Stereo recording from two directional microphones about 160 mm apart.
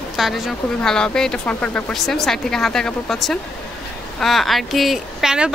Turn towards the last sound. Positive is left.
turn(degrees=-5)  # may be behind; listen again after turning